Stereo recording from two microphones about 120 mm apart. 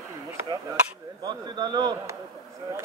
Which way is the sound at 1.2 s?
35° right (ahead or behind).